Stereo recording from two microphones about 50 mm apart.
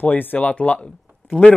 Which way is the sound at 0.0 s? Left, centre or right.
Left.